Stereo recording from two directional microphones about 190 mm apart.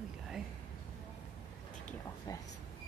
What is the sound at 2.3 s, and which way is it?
Speech, 20° left (ahead or behind).